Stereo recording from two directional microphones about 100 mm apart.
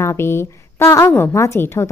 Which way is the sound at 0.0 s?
25° left (ahead or behind).